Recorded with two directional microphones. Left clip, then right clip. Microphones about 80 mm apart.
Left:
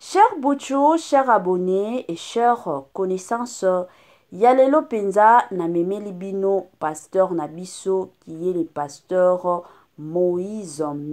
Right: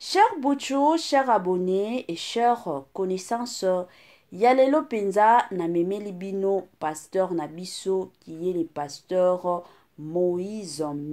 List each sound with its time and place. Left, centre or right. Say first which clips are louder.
0.0 s speech: left 4 dB; left